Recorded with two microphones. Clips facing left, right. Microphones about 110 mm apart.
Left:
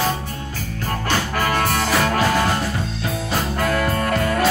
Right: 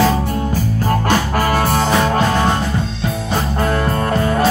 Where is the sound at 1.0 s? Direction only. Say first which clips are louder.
Right 2 dB; 45° right (ahead or behind); by 2.2 s 25° right (ahead or behind).